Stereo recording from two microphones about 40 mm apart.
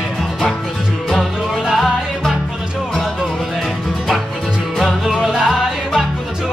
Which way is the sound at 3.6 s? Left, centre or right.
Centre.